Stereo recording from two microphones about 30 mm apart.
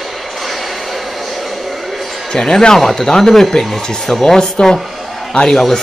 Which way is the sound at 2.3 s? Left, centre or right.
Centre.